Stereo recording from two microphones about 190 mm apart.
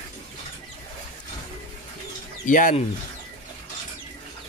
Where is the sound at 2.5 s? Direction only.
45° left (ahead or behind).